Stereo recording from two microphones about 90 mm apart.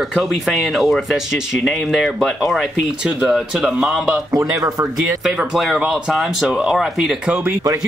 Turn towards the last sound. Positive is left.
turn(degrees=-5)  # may be behind; listen again after turning